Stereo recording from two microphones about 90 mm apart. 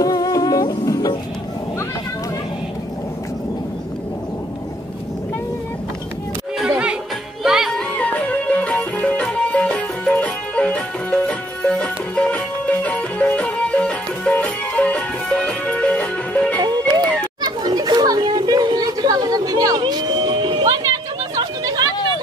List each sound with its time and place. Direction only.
0.0 s music: 40° left (ahead or behind)
6.6 s music: 10° right (ahead or behind)
7.7 s music: 15° left (ahead or behind)
17.4 s children playing: 55° right (ahead or behind)
20.8 s a sound: 50° right (ahead or behind)